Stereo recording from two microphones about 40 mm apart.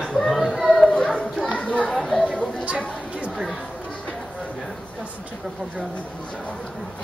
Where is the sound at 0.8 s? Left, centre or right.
Left.